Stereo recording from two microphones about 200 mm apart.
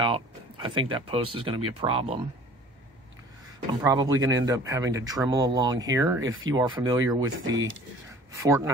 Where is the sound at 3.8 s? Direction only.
15° right (ahead or behind).